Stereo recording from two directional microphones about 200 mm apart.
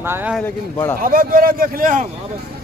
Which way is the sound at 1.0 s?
45° right (ahead or behind).